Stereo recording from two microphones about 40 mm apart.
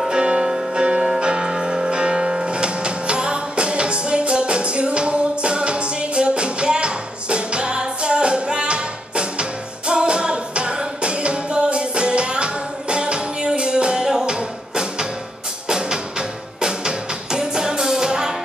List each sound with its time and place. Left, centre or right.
0.1 s music: right